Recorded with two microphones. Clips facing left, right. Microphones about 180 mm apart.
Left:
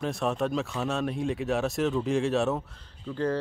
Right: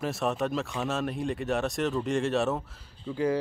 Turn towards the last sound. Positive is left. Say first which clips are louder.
# right 1 dB
turn(degrees=-10)  # may be behind; listen again after turning